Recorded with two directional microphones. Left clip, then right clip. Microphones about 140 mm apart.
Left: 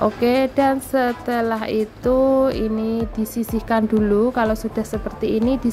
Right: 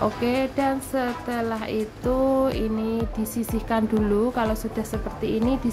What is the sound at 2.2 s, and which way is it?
A woman's voice, 35° left (ahead or behind).